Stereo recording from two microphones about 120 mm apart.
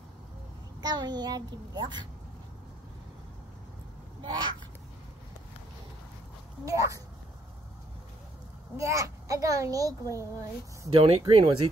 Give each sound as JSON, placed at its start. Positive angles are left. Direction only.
{"t": 0.7, "sound": "a child's voice", "side_deg": -35}
{"t": 4.2, "sound": "speech", "side_deg": -40}
{"t": 6.6, "sound": "a woman's voice", "side_deg": -25}
{"t": 8.7, "sound": "a woman's voice", "side_deg": -25}
{"t": 10.9, "sound": "speech", "side_deg": -50}